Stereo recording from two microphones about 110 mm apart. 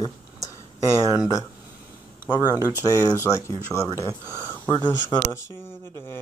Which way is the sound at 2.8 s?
25° left (ahead or behind).